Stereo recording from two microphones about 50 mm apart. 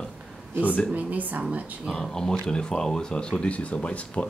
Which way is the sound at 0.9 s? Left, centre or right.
Right.